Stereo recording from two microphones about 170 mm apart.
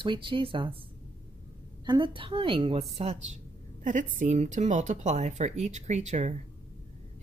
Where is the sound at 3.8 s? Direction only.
50° right (ahead or behind).